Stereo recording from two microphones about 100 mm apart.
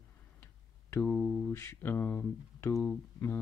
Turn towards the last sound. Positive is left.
turn(degrees=25)  # may be behind; listen again after turning